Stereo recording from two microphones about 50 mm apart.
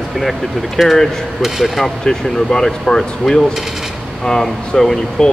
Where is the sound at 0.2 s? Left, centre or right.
Centre.